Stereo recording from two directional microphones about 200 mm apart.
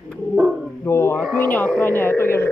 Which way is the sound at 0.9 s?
10° left (ahead or behind).